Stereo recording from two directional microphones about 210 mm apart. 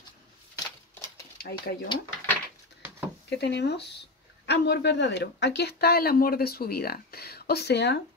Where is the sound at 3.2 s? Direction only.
55° left (ahead or behind).